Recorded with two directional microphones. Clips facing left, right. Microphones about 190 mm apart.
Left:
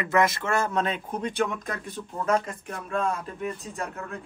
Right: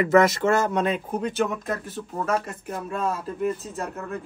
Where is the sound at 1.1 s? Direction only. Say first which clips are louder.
Right 2 dB; 5° right (ahead or behind).